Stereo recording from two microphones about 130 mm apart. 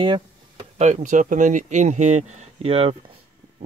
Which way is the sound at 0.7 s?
60° right (ahead or behind).